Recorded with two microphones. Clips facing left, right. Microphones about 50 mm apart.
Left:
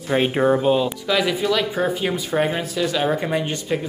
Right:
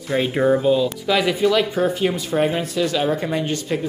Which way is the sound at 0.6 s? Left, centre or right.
Left.